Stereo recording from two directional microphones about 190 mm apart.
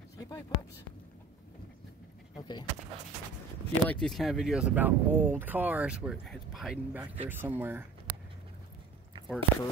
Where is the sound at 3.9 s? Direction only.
Centre (ahead or behind).